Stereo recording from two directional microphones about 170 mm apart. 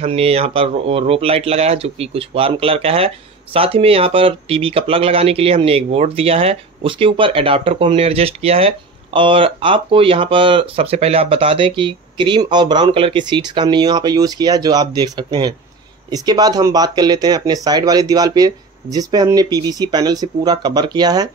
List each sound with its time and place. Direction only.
0.0 s speech: 35° right (ahead or behind)